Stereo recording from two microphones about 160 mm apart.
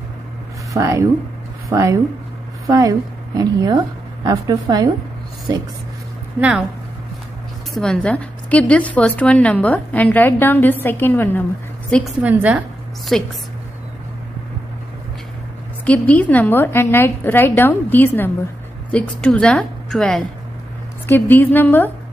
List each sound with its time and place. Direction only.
0.7 s a woman's voice: 20° right (ahead or behind)
6.4 s speech: 15° right (ahead or behind)
7.7 s a woman's voice: 5° left (ahead or behind)
12.2 s a woman's voice: 10° right (ahead or behind)
15.8 s a woman's voice: 10° left (ahead or behind)